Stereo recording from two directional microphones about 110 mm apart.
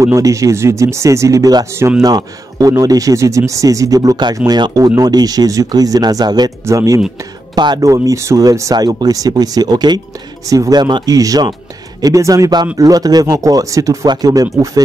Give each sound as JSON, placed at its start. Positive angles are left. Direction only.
{"t": 0.0, "sound": "speech", "side_deg": -30}
{"t": 1.8, "sound": "speech", "side_deg": -25}
{"t": 2.0, "sound": "speech", "side_deg": -35}
{"t": 6.6, "sound": "speech", "side_deg": -30}
{"t": 7.5, "sound": "speech", "side_deg": -40}